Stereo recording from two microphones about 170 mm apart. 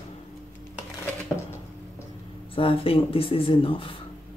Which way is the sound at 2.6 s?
35° left (ahead or behind).